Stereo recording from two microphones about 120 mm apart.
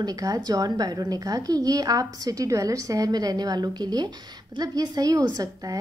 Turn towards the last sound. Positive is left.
turn(degrees=-30)  # may be behind; listen again after turning